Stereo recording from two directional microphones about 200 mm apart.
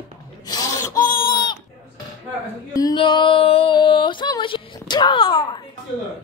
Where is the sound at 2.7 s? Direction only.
20° left (ahead or behind).